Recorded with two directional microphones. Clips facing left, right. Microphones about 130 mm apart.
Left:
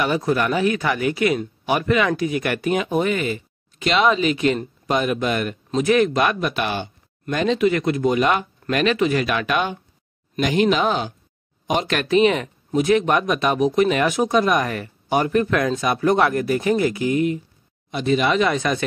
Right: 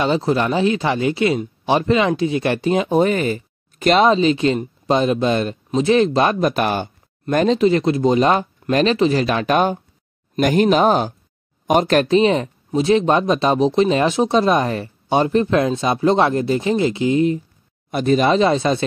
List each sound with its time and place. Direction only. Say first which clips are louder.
0.0 s speech: right 2 dB; 25° right (ahead or behind)
17.9 s speech: right 3 dB; 40° right (ahead or behind)